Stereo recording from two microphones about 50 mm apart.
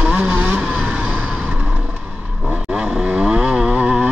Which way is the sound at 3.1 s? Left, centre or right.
Centre.